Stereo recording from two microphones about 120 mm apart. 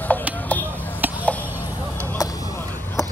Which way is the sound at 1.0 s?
15° right (ahead or behind).